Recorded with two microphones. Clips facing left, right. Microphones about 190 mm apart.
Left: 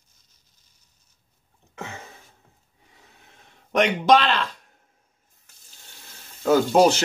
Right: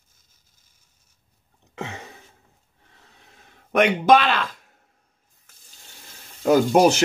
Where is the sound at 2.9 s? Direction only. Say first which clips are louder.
Even; 10° left (ahead or behind).